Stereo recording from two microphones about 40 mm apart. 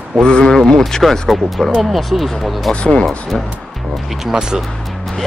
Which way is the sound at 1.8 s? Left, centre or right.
Centre.